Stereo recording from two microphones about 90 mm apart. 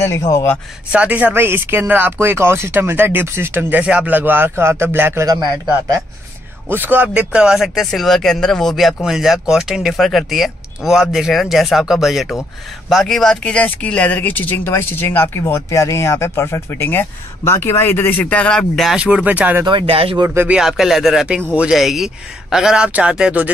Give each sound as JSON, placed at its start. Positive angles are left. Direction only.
{"t": 0.0, "sound": "speech", "side_deg": 35}
{"t": 0.9, "sound": "speech", "side_deg": -15}
{"t": 3.8, "sound": "speech", "side_deg": -15}
{"t": 6.7, "sound": "speech", "side_deg": -20}
{"t": 18.9, "sound": "speech", "side_deg": -10}
{"t": 19.6, "sound": "speech", "side_deg": -75}
{"t": 20.4, "sound": "speech", "side_deg": -5}